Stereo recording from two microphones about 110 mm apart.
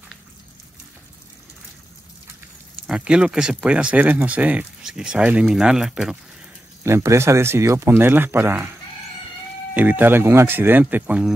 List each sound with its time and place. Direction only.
2.9 s speech: 10° right (ahead or behind)
6.8 s speech: 25° right (ahead or behind)
9.8 s speech: 15° right (ahead or behind)